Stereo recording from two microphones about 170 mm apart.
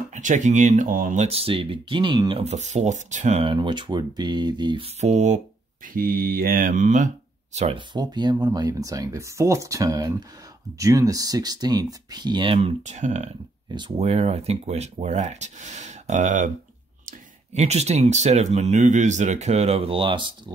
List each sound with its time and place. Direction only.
0.1 s speech: 45° right (ahead or behind)
3.5 s speech: 25° right (ahead or behind); by 5.4 s 45° right (ahead or behind)
5.9 s mantra: 60° right (ahead or behind)
7.5 s speech: 40° right (ahead or behind)
7.9 s speech: 25° right (ahead or behind); by 13.3 s 40° right (ahead or behind)
13.7 s speech: 25° right (ahead or behind)
13.9 s speech: 40° right (ahead or behind)
17.6 s speech: 40° right (ahead or behind)